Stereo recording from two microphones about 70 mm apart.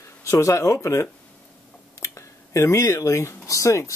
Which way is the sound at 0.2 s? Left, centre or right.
Left.